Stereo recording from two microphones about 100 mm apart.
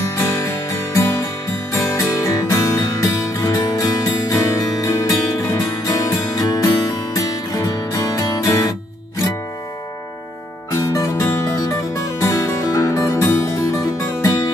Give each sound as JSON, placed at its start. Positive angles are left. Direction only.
{"t": 0.1, "sound": "music", "side_deg": 30}
{"t": 10.8, "sound": "music", "side_deg": 35}